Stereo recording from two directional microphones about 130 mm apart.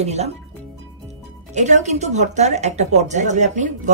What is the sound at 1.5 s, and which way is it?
A woman's voice, 65° right (ahead or behind).